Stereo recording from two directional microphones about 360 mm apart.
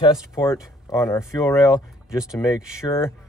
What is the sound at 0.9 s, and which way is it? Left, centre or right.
Speech, centre.